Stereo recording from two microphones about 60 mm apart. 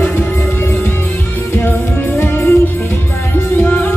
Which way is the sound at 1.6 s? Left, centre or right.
Left.